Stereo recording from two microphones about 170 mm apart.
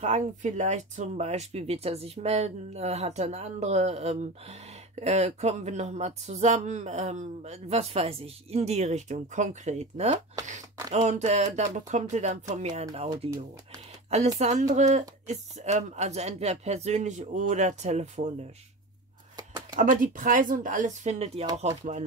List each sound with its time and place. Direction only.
0.0 s speech: 45° right (ahead or behind)
14.4 s speech: 45° right (ahead or behind)
19.3 s a sound: 25° right (ahead or behind)
19.8 s speech: 50° right (ahead or behind)